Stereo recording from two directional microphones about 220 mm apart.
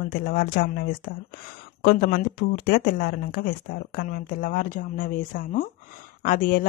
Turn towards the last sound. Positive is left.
turn(degrees=40)  # may be behind; listen again after turning